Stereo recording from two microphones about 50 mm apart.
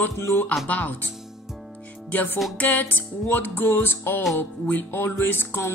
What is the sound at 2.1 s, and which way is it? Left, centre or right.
Music, left.